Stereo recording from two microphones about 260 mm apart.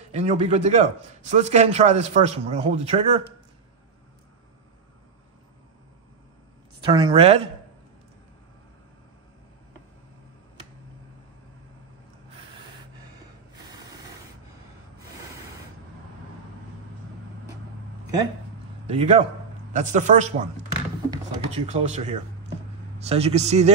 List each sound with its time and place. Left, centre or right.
0.1 s a man's voice: right
6.8 s a man's voice: centre
18.9 s a man's voice: right
21.5 s a man's voice: right